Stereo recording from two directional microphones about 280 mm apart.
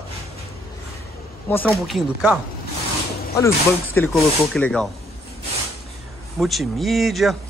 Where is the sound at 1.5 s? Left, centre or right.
Centre.